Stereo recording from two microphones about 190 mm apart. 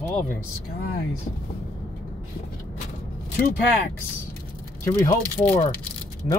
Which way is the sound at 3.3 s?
50° left (ahead or behind).